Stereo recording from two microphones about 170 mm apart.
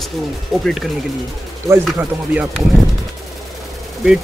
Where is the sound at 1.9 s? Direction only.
10° right (ahead or behind).